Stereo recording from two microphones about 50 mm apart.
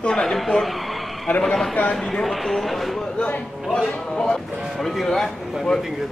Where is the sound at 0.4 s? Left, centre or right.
Centre.